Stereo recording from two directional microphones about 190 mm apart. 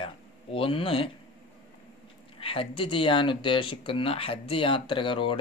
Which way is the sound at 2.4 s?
30° left (ahead or behind).